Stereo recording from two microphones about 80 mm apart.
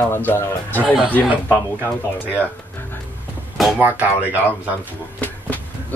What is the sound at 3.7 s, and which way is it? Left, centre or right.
Speech, right.